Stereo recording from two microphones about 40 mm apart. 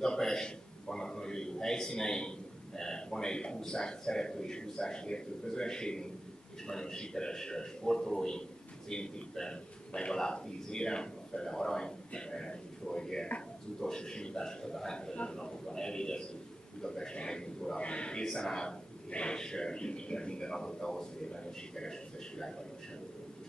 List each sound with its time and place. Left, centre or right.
0.0 s a man's voice: centre
18.2 s a man's voice: centre
19.0 s speech: left
19.3 s a man's voice: centre